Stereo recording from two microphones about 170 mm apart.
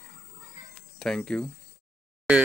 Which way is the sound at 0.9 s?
5° left (ahead or behind).